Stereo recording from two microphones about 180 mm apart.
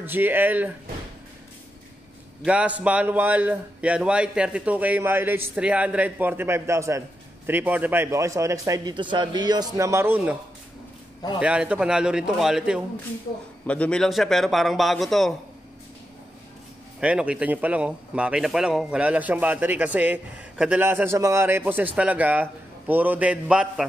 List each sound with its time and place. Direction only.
0.0 s a man's voice: 10° right (ahead or behind)
2.4 s a man's voice: 5° right (ahead or behind)
11.3 s a man's voice: 5° right (ahead or behind)
17.0 s a man's voice: 5° right (ahead or behind)